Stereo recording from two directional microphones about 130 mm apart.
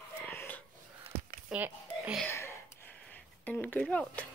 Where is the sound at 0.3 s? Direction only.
20° left (ahead or behind).